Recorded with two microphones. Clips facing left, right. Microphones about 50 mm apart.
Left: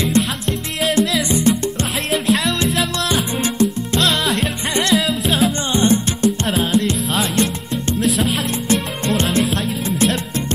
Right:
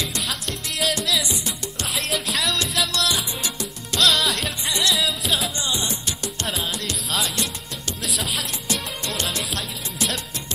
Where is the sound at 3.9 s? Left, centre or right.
Centre.